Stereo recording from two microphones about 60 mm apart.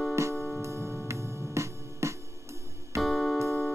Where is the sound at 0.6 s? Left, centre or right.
Right.